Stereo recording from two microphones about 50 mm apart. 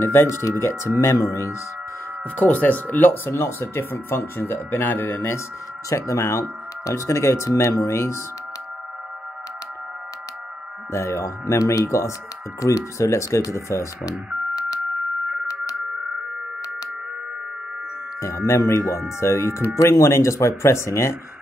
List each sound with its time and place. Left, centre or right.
0.0 s speech: left
2.3 s speech: left
3.3 s speech: left
5.9 s speech: left
10.9 s speech: left
18.2 s speech: left